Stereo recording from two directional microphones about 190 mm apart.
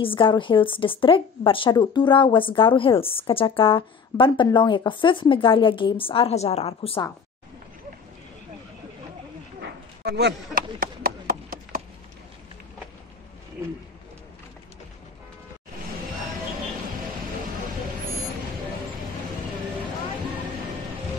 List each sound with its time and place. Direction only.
0.0 s a woman's voice: 25° left (ahead or behind)
9.6 s chop: 60° right (ahead or behind)